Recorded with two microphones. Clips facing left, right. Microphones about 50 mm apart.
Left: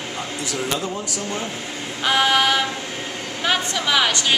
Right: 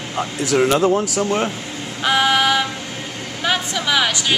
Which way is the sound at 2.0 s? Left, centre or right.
Centre.